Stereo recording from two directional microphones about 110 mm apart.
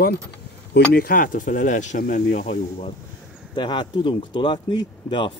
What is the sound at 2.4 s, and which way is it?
Speech, 60° left (ahead or behind).